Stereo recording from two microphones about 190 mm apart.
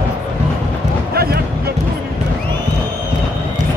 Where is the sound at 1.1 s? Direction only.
55° right (ahead or behind).